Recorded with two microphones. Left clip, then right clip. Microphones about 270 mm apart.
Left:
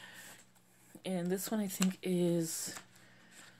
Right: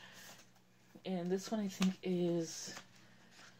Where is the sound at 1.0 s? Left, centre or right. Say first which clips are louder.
Left 2 dB; left.